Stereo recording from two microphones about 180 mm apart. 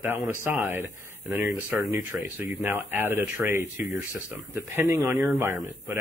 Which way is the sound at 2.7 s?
15° right (ahead or behind).